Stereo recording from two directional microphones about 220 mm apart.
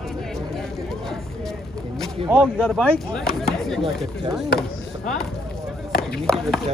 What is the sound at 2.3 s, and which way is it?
Speech, centre (ahead or behind).